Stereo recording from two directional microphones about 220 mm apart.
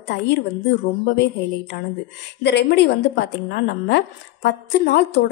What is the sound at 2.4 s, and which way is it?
A woman's voice, 50° left (ahead or behind).